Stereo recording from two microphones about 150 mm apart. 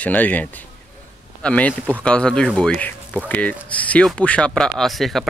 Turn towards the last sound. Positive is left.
turn(degrees=0)  # may be behind; listen again after turning